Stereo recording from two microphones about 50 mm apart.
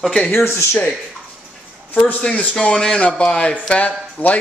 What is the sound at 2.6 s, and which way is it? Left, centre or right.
Speech, left.